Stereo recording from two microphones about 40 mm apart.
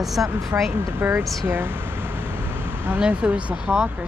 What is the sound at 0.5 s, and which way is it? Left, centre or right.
Speech, right.